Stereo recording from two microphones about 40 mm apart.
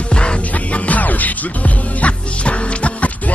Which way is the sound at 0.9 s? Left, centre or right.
Left.